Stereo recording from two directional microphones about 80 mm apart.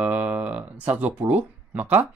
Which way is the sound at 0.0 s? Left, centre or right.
Centre.